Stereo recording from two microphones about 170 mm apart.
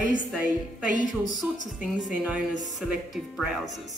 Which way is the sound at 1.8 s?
5° right (ahead or behind).